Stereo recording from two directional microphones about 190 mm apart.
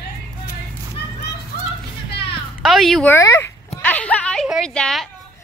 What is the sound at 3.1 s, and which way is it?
Speech, 15° left (ahead or behind).